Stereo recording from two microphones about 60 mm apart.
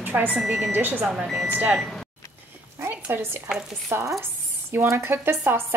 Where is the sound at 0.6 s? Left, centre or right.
Right.